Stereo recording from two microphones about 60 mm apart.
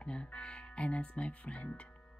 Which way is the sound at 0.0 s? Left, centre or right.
Centre.